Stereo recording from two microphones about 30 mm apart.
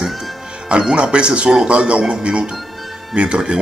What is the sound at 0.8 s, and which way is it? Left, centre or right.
Speech, right.